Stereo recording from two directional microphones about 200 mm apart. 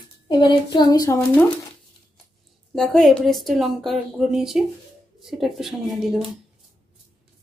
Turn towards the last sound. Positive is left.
turn(degrees=0)  # may be behind; listen again after turning